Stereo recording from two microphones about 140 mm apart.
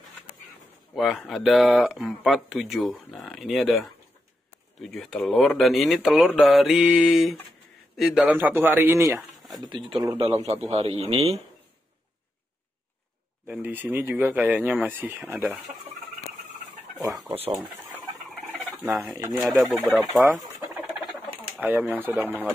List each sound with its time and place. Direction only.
0.9 s speech: centre (ahead or behind); by 9.2 s 15° right (ahead or behind)
9.7 s speech: 35° right (ahead or behind)
13.5 s speech: 10° right (ahead or behind)
18.8 s fowl: 15° right (ahead or behind)
19.1 s speech: 20° right (ahead or behind)
19.4 s speech: centre (ahead or behind)
20.7 s a sound: centre (ahead or behind)
21.5 s speech: 15° right (ahead or behind)